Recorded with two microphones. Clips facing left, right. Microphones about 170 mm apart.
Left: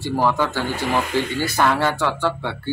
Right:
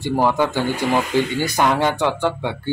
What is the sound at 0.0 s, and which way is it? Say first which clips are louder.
Speech: right 2 dB; 15° right (ahead or behind).